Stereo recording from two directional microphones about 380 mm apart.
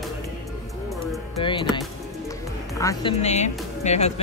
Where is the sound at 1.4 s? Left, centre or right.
Centre.